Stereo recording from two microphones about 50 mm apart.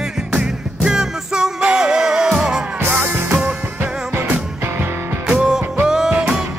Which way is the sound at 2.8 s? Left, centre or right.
Right.